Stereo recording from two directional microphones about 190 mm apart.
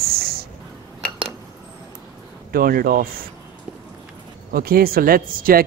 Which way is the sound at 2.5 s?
50° right (ahead or behind).